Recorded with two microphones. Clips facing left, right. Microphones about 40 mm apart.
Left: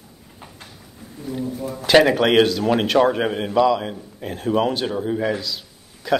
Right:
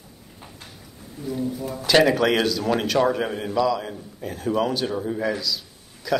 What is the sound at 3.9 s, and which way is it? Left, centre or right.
Speech, left.